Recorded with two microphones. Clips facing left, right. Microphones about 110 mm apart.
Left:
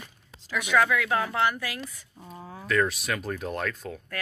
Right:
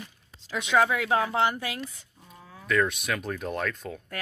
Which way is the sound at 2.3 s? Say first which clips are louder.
Left 7 dB; 30° left (ahead or behind).